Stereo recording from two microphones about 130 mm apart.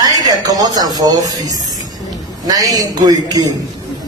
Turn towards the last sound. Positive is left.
turn(degrees=-30)  # may be behind; listen again after turning